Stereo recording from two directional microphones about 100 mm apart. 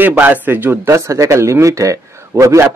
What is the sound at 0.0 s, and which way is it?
Speech, 20° right (ahead or behind).